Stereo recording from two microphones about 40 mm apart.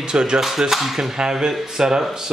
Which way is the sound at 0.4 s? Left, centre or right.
Centre.